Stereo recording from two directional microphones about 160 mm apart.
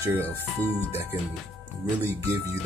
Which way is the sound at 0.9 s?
15° right (ahead or behind).